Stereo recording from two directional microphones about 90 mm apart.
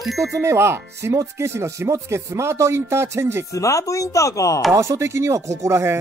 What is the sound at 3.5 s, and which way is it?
Speech, 35° left (ahead or behind).